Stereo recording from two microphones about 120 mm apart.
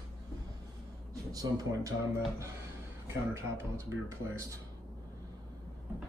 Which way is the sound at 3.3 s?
25° right (ahead or behind).